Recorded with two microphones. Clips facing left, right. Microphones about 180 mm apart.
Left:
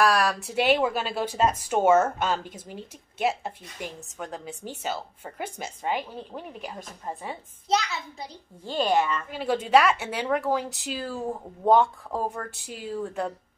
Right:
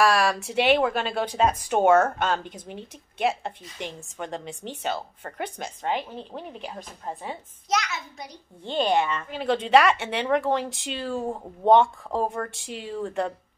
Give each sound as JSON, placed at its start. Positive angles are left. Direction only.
{"t": 0.0, "sound": "a woman's voice", "side_deg": 0}
{"t": 7.7, "sound": "a child's voice", "side_deg": 30}
{"t": 8.6, "sound": "speech", "side_deg": 5}